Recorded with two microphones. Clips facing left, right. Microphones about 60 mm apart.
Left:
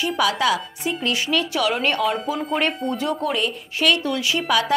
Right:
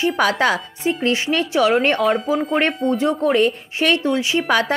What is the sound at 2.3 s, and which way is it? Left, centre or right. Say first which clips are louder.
Speech: right 5 dB; centre.